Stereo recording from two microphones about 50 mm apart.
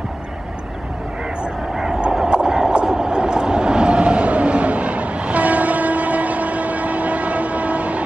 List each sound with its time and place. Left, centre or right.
2.1 s train: centre